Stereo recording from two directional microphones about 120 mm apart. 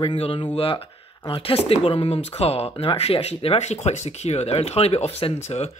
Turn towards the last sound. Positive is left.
turn(degrees=60)  # may be behind; listen again after turning